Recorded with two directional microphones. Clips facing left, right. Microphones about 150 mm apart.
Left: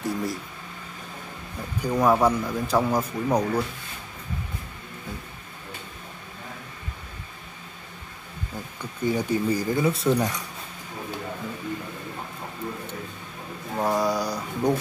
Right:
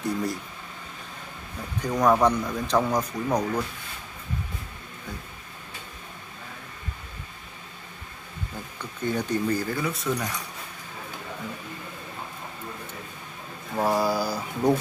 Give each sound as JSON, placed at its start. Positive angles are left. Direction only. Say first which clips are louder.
{"t": 0.0, "sound": "speech", "louder": "even", "side_deg": 0}
{"t": 1.8, "sound": "speech", "louder": "even", "side_deg": 5}
{"t": 9.0, "sound": "speech", "louder": "left 2 dB", "side_deg": 10}
{"t": 9.8, "sound": "speech", "louder": "left 6 dB", "side_deg": 25}
{"t": 13.7, "sound": "a sound", "louder": "even", "side_deg": -5}